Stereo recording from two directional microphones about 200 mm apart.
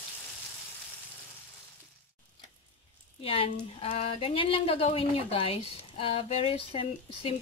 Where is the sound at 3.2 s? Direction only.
30° left (ahead or behind).